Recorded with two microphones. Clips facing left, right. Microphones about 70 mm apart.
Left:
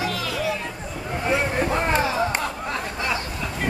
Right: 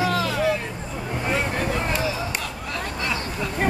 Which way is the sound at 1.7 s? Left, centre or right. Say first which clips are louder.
Left 4 dB; left.